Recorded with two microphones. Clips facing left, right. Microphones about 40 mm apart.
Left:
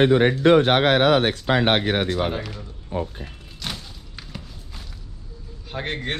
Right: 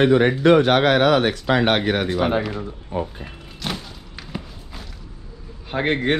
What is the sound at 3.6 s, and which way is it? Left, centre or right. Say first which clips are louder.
Thump: right 4 dB; centre.